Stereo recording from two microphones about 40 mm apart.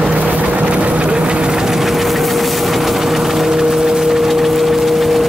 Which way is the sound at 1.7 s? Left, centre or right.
Centre.